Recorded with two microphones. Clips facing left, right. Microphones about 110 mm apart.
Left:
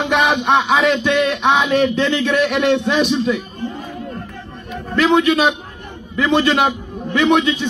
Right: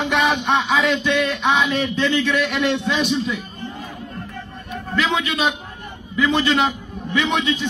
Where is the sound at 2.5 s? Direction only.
50° left (ahead or behind).